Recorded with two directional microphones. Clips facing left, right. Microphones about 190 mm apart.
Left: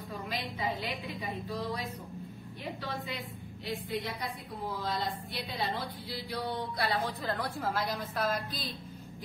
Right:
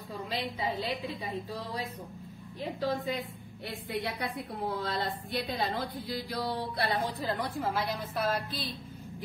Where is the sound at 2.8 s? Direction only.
40° right (ahead or behind).